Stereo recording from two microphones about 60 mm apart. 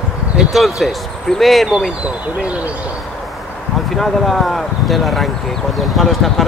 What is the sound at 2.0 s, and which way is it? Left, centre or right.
Speech, right.